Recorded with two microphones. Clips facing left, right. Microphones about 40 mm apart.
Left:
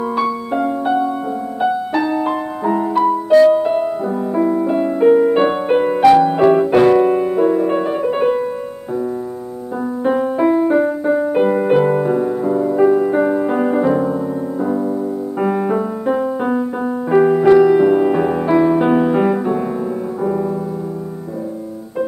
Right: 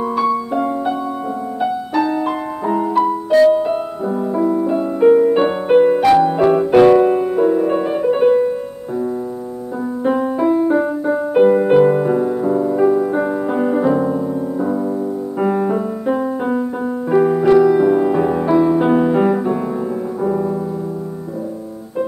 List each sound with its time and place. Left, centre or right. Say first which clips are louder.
0.6 s music: left 2 dB; centre
4.3 s music: left 1 dB; centre
5.3 s music: right 1 dB; centre
10.0 s music: left 1 dB; centre
15.4 s music: even; centre